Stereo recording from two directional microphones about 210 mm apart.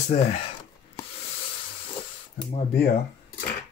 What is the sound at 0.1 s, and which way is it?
Speech, 40° left (ahead or behind).